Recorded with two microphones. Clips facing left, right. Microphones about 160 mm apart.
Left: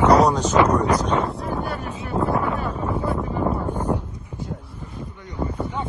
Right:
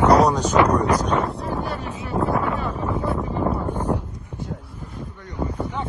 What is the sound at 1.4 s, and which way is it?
Wind noise, 5° left (ahead or behind).